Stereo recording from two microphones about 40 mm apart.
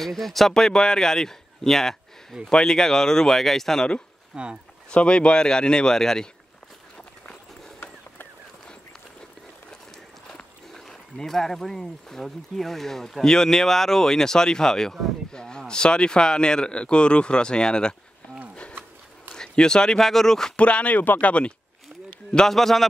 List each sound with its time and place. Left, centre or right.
0.0 s speech: centre
4.3 s speech: centre
4.9 s speech: left
11.1 s speech: centre
19.3 s a sound: centre
20.0 s speech: centre
20.5 s speech: left
20.9 s speech: left
22.5 s speech: centre